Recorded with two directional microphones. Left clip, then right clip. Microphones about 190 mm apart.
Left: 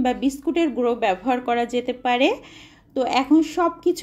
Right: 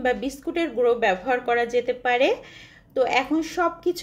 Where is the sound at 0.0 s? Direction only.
25° left (ahead or behind).